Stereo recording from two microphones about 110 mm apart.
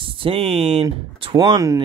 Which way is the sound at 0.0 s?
55° right (ahead or behind).